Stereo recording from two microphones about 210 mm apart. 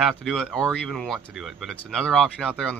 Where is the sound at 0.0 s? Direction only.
Centre (ahead or behind).